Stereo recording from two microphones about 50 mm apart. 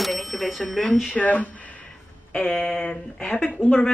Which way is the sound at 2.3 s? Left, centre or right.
Centre.